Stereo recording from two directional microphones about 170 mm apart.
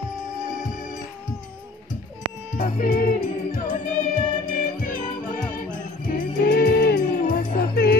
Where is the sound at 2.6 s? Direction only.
55° left (ahead or behind).